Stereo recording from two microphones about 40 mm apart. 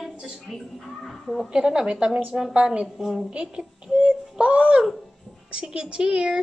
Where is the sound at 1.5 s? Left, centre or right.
Centre.